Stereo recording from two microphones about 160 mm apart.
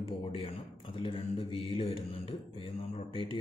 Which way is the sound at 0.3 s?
35° left (ahead or behind).